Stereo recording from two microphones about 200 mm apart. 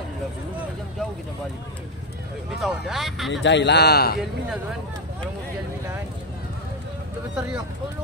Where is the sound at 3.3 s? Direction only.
65° left (ahead or behind).